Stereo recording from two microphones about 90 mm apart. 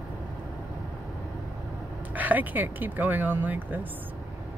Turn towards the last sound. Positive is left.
turn(degrees=-20)  # may be behind; listen again after turning